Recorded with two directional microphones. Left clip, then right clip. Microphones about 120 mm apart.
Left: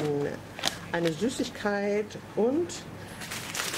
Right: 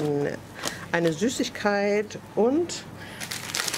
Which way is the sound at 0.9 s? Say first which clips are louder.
Right 6 dB; 35° right (ahead or behind).